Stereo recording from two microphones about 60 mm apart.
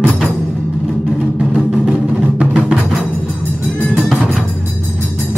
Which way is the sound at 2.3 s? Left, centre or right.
Centre.